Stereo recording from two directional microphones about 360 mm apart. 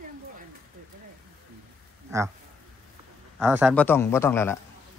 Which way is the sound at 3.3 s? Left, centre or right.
Centre.